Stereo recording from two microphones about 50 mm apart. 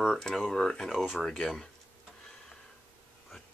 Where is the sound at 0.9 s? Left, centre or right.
Centre.